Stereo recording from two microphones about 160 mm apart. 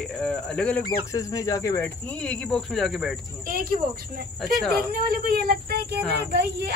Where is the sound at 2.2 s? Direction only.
5° left (ahead or behind).